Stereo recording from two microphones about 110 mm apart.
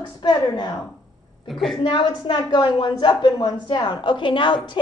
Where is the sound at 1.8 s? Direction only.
45° left (ahead or behind).